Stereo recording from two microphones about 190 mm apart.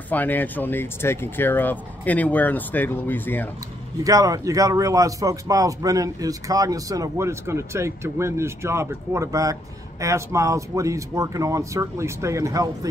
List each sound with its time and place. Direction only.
0.1 s speech: 10° left (ahead or behind)
4.0 s speech: 20° right (ahead or behind)